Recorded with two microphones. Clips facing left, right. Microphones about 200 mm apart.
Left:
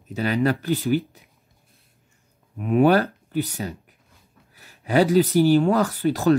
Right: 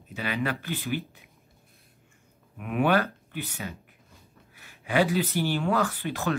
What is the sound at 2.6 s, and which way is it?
Speech, 35° left (ahead or behind).